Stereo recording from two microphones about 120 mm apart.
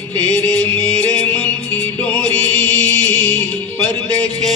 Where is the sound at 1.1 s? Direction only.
10° left (ahead or behind).